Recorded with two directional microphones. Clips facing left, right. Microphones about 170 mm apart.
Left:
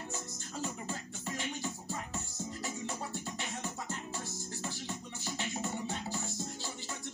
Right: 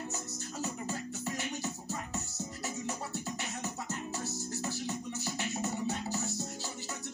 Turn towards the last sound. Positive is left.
turn(degrees=-40)  # may be behind; listen again after turning